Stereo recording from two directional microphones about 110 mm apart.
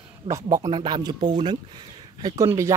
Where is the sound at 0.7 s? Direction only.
45° right (ahead or behind).